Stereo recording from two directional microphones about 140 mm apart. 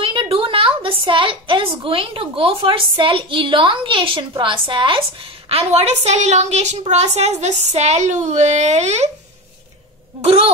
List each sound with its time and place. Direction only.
0.0 s a woman's voice: 40° right (ahead or behind)
5.5 s a woman's voice: 45° right (ahead or behind)